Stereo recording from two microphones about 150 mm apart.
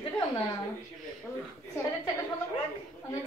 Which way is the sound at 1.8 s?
20° left (ahead or behind).